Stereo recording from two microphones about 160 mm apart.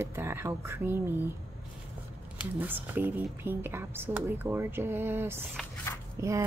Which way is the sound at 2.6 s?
10° right (ahead or behind).